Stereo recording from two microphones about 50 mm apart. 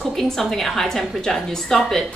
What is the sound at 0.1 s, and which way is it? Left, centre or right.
A woman's voice, centre.